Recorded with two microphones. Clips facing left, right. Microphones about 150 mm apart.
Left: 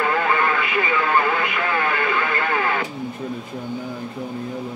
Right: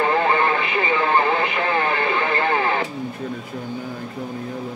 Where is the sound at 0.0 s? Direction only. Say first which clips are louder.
Right 2 dB; 30° right (ahead or behind).